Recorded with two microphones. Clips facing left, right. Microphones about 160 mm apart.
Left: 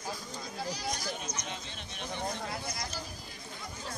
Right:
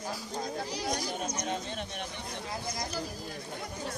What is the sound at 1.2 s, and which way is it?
Speech, 50° right (ahead or behind).